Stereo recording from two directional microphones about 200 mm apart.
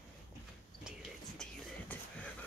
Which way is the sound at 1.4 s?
5° left (ahead or behind).